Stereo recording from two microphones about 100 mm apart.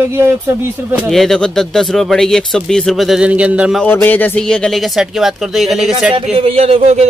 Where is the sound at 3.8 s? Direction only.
20° left (ahead or behind).